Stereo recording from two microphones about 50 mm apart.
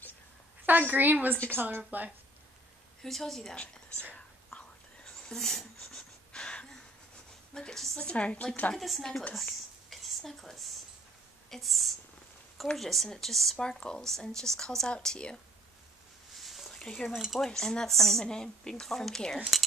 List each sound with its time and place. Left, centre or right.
0.7 s a woman's voice: right
3.0 s a woman's voice: centre
5.3 s a sound: centre
7.5 s speech: centre
8.1 s a woman's voice: left
8.7 s a woman's voice: centre
9.8 s a sound: centre
11.5 s a woman's voice: centre
13.6 s a woman's voice: centre
16.3 s a sound: centre
16.7 s speech: centre
17.1 s a woman's voice: centre
17.4 s speech: centre